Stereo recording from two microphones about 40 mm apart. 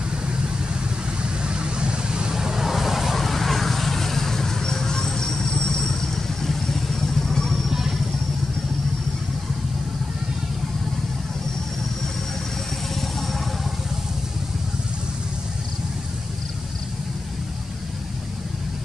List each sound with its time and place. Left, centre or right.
1.4 s vehicle: right; by 8.0 s centre
12.9 s vehicle: centre